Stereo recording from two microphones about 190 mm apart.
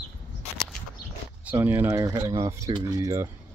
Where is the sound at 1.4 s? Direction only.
10° right (ahead or behind).